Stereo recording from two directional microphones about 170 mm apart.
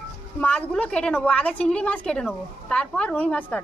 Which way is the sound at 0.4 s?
10° left (ahead or behind).